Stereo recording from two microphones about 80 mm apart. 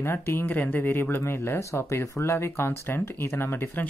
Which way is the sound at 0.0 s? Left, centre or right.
Left.